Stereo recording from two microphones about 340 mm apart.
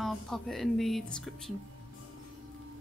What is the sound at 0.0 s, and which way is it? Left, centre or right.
A woman's voice, centre.